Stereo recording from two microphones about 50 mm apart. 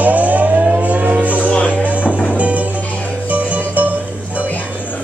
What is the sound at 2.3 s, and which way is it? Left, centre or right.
Music, right.